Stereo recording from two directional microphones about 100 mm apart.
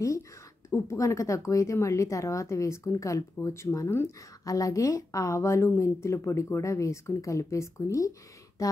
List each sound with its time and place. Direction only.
0.7 s a woman's voice: 30° left (ahead or behind)